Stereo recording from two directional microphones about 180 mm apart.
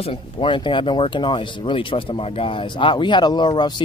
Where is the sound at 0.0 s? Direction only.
30° left (ahead or behind).